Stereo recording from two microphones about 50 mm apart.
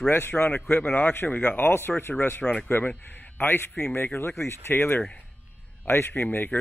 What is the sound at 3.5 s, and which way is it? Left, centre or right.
Speech, left.